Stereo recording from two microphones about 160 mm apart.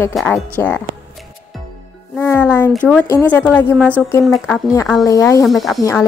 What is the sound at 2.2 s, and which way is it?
Speech, 10° left (ahead or behind).